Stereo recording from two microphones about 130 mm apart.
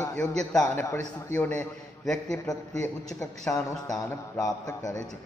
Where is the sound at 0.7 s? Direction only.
15° left (ahead or behind).